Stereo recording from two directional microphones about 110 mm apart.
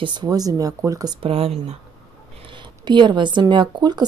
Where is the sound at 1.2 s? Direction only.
60° right (ahead or behind).